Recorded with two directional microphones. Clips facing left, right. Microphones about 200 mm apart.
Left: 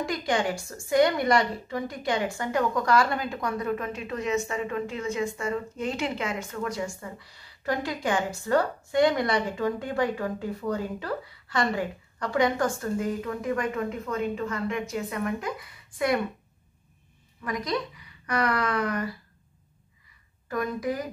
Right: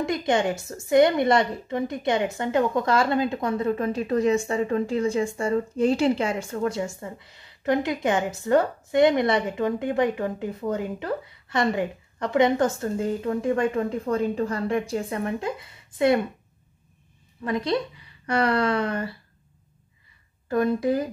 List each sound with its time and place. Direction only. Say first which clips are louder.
0.0 s a woman's voice: right 4 dB; 25° right (ahead or behind)
17.4 s a woman's voice: right 5 dB; 30° right (ahead or behind)
20.4 s a woman's voice: right 6 dB; 30° right (ahead or behind)